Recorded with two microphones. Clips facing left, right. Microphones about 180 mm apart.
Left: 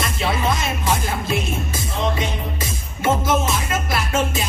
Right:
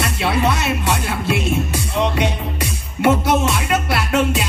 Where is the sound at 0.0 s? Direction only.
70° right (ahead or behind).